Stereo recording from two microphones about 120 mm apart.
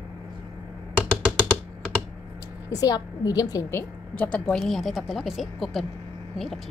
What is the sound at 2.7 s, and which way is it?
A woman's voice, 30° left (ahead or behind).